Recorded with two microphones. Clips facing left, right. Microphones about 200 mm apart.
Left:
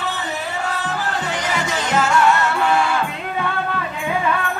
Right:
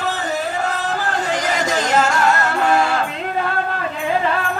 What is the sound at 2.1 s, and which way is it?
Music, 40° right (ahead or behind).